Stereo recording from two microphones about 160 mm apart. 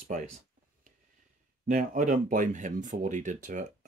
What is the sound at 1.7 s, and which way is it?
Speech, 60° right (ahead or behind).